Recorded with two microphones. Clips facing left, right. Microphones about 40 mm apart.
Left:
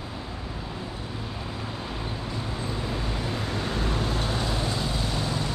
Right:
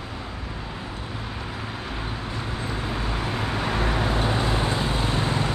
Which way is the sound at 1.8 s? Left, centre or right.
Right.